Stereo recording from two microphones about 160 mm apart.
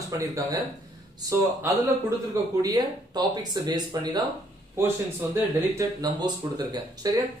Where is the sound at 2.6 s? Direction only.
25° right (ahead or behind).